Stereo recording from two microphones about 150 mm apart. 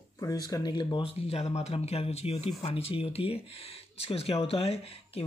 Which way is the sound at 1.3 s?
45° left (ahead or behind).